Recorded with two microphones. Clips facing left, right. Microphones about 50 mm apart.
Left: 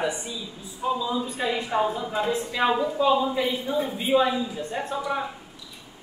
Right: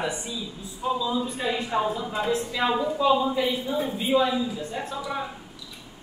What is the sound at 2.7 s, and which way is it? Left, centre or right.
Speech, centre.